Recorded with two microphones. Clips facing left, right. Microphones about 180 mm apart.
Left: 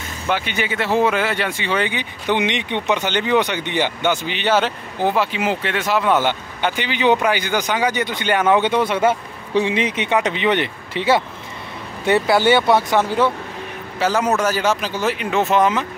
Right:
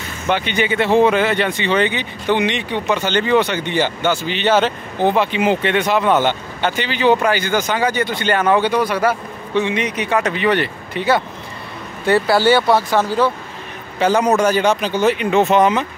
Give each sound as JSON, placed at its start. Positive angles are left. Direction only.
{"t": 0.3, "sound": "speech", "side_deg": 5}
{"t": 13.9, "sound": "speech", "side_deg": 5}